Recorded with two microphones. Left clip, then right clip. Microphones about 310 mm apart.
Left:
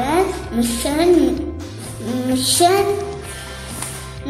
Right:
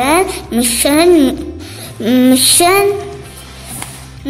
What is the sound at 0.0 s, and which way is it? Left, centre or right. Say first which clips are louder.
A woman's voice: right 6 dB; right.